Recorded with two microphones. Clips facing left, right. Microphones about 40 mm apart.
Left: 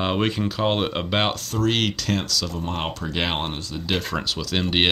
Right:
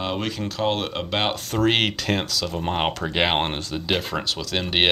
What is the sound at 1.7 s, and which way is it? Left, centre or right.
Speech, right.